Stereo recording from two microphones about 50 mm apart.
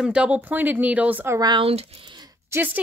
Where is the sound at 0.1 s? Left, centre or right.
Right.